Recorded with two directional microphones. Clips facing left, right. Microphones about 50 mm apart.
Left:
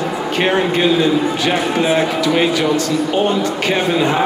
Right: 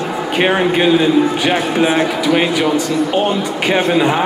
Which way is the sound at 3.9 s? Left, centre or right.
Centre.